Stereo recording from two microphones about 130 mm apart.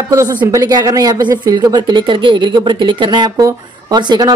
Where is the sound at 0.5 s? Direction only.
30° right (ahead or behind).